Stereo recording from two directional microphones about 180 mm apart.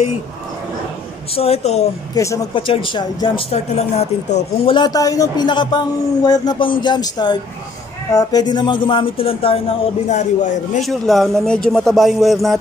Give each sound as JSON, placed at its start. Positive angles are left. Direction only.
{"t": 1.3, "sound": "a man's voice", "side_deg": 35}
{"t": 2.1, "sound": "speech", "side_deg": 20}
{"t": 4.7, "sound": "speech", "side_deg": 20}
{"t": 10.0, "sound": "a man's voice", "side_deg": 40}
{"t": 10.8, "sound": "speech", "side_deg": 0}